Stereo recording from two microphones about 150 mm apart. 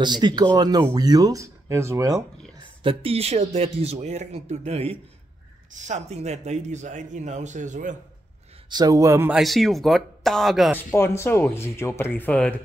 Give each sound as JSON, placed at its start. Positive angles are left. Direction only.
{"t": 0.0, "sound": "speech", "side_deg": -30}
{"t": 2.8, "sound": "speech", "side_deg": -35}
{"t": 8.6, "sound": "speech", "side_deg": -25}
{"t": 9.3, "sound": "speech", "side_deg": 0}
{"t": 10.8, "sound": "speech", "side_deg": 15}